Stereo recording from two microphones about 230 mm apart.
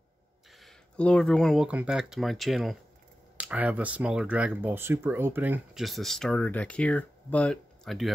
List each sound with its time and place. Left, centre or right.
0.6 s speech: centre